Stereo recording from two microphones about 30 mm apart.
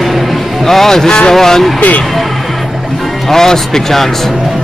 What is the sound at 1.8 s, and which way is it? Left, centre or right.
Speech, left.